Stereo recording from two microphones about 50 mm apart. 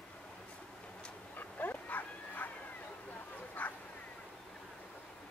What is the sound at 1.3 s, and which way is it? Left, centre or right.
Dog, left.